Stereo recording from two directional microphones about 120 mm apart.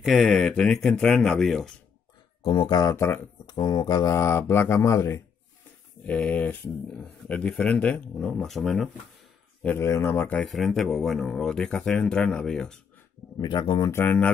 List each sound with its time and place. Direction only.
0.0 s speech: centre (ahead or behind)
2.4 s a sound: 45° left (ahead or behind)
2.8 s speech: 25° left (ahead or behind)
3.4 s speech: 40° left (ahead or behind)
6.0 s speech: 10° left (ahead or behind)
9.6 s speech: 15° left (ahead or behind)
10.5 s speech: centre (ahead or behind)
13.4 s speech: 40° left (ahead or behind)
13.9 s speech: 15° left (ahead or behind)